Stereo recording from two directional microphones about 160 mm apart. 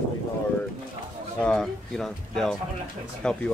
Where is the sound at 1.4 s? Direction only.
5° left (ahead or behind).